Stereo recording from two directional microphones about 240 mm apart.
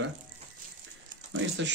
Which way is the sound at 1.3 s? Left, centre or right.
Right.